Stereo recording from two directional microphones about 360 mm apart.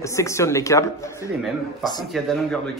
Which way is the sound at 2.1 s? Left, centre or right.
Centre.